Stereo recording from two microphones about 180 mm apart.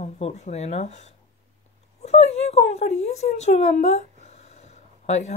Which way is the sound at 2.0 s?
35° left (ahead or behind).